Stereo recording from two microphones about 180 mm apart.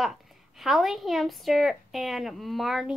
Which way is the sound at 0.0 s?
Centre (ahead or behind).